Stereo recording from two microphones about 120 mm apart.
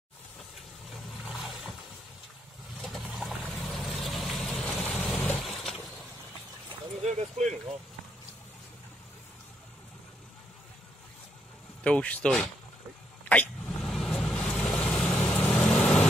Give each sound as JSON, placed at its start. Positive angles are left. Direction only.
{"t": 0.8, "sound": "roaring cats", "side_deg": 0}
{"t": 2.8, "sound": "vehicle", "side_deg": 0}
{"t": 5.1, "sound": "a sound", "side_deg": 15}
{"t": 7.0, "sound": "a sound", "side_deg": -75}
{"t": 11.8, "sound": "speech", "side_deg": 10}
{"t": 13.3, "sound": "vehicle", "side_deg": 10}